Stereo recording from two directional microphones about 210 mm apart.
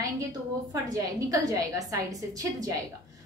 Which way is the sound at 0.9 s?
15° right (ahead or behind).